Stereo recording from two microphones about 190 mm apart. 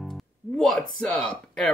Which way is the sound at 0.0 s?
Centre (ahead or behind).